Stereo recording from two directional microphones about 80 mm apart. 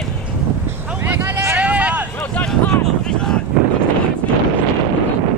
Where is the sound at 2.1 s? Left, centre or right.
Centre.